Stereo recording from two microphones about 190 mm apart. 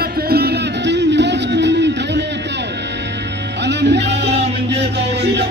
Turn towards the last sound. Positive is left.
turn(degrees=-65)  # may be behind; listen again after turning